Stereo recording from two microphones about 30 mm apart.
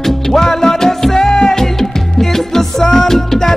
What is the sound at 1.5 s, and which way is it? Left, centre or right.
Music, centre.